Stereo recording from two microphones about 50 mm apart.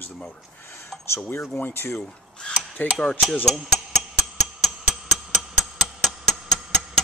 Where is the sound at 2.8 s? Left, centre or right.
Left.